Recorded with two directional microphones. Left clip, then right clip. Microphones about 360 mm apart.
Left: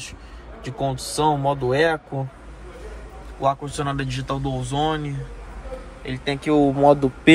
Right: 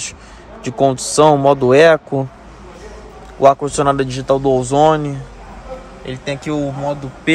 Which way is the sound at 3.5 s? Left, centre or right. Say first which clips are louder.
Right 11 dB; centre.